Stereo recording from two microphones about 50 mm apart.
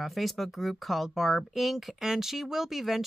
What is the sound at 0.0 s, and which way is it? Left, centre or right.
Speech, centre.